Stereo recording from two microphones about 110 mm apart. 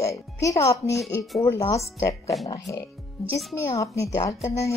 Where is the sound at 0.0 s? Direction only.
30° left (ahead or behind).